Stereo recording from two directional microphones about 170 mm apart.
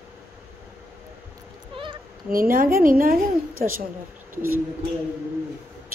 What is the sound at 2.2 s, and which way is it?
A woman's voice, 55° right (ahead or behind).